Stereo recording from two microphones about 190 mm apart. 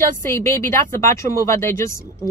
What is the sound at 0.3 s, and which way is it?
Speech, 15° left (ahead or behind).